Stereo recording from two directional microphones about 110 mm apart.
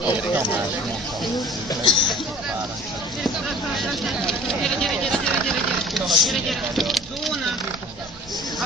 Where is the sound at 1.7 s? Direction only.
45° left (ahead or behind).